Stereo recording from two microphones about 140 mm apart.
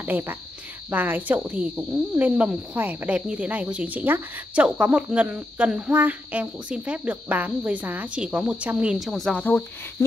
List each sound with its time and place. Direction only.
0.0 s speech: 15° right (ahead or behind); by 9.7 s 10° left (ahead or behind)